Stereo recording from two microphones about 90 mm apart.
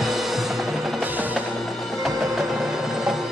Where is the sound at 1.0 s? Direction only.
20° right (ahead or behind).